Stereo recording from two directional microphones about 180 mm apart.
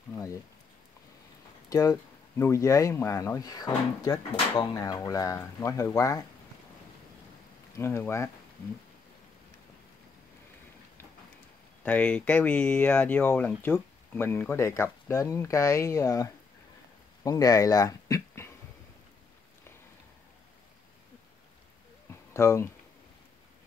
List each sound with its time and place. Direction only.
1.7 s speech: 20° left (ahead or behind)
7.7 s speech: 15° left (ahead or behind)
11.8 s speech: 5° left (ahead or behind)
22.1 s a sound: 15° left (ahead or behind)